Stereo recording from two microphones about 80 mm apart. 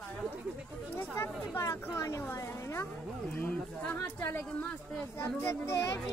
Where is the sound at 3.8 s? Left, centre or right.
Left.